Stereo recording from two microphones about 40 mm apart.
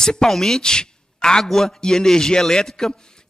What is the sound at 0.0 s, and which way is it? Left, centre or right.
A woman's voice, centre.